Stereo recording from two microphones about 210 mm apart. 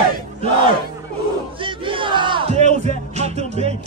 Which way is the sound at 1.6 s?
25° right (ahead or behind).